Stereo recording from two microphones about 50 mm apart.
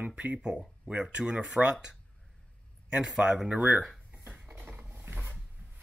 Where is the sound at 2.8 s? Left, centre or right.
Centre.